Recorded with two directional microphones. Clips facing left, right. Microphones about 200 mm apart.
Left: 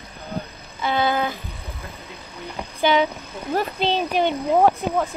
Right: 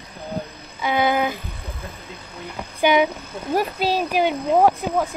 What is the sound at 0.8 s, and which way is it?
Speech, 15° right (ahead or behind).